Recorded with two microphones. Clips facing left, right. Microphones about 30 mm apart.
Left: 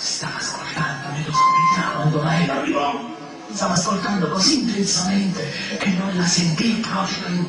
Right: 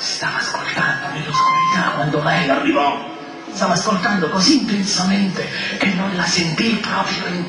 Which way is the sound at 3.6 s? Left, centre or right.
Right.